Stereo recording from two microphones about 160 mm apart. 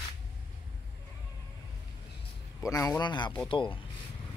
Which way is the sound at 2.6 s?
20° left (ahead or behind).